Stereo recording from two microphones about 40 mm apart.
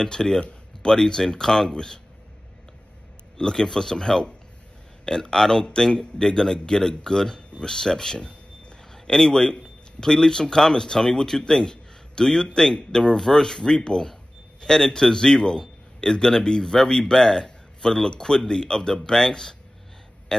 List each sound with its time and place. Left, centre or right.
0.0 s a man's voice: centre
3.3 s a man's voice: centre
8.2 s a sound: left
8.9 s a man's voice: centre